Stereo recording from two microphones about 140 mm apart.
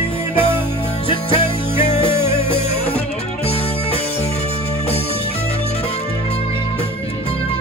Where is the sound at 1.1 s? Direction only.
40° left (ahead or behind).